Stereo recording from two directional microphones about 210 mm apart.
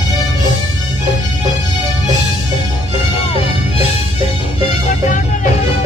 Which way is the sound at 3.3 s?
25° left (ahead or behind).